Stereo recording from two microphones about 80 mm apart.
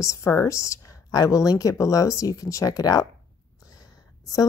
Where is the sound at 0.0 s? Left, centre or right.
Left.